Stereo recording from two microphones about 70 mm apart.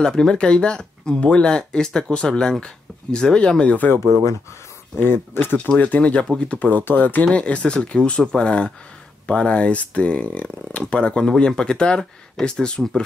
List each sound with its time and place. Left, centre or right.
0.0 s speech: centre
5.0 s speech: left
5.8 s speech: left